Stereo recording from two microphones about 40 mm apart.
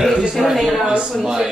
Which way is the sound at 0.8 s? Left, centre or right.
Centre.